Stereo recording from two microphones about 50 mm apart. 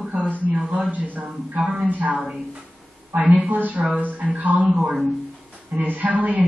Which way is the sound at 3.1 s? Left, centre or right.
Right.